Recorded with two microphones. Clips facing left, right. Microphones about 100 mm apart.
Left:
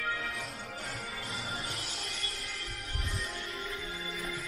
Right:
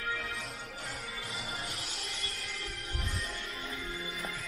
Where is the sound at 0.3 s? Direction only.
Centre (ahead or behind).